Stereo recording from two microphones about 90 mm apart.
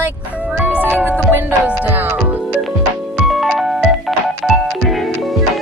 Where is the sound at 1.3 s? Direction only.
20° right (ahead or behind).